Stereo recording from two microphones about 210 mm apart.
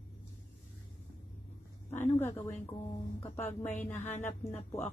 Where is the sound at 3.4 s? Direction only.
10° left (ahead or behind).